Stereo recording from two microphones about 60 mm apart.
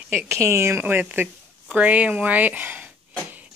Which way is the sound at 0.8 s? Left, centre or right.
Right.